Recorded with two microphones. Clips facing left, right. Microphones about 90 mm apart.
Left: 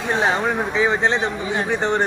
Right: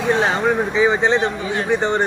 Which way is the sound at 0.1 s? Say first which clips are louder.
Right 2 dB; 5° left (ahead or behind).